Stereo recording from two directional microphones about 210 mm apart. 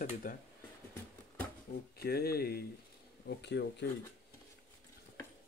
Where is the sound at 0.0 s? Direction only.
40° left (ahead or behind).